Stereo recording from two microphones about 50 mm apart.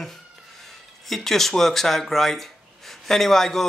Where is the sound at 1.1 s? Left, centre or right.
Centre.